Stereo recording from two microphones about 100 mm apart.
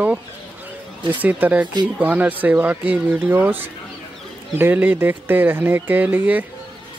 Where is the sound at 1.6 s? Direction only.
50° right (ahead or behind).